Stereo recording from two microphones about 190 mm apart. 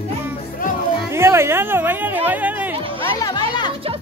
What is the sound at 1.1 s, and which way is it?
Speech, 15° right (ahead or behind).